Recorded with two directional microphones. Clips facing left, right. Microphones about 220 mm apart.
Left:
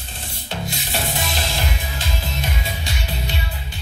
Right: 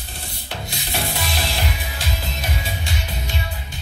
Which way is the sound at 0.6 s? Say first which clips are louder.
Left 2 dB; 20° left (ahead or behind).